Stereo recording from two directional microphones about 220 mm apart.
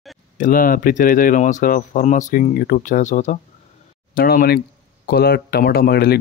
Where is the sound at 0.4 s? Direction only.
40° left (ahead or behind).